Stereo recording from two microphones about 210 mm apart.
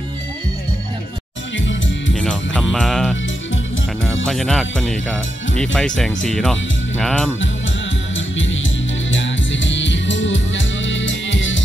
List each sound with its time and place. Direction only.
1.7 s music: 60° left (ahead or behind)
2.1 s music: 5° left (ahead or behind)
2.7 s speech: centre (ahead or behind)
4.3 s speech: centre (ahead or behind)
9.1 s music: 60° left (ahead or behind)